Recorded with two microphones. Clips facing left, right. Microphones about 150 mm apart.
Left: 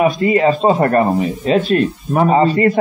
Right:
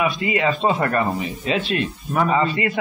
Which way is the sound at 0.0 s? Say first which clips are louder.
Left 8 dB; 40° left (ahead or behind).